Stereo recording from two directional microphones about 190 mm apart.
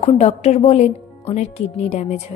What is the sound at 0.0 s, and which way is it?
Speech, 35° left (ahead or behind).